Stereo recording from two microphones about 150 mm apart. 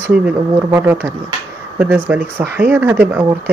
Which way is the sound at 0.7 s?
15° right (ahead or behind).